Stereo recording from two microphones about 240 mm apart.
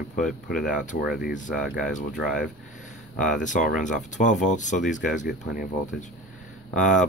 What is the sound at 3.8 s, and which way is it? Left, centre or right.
Speech, left.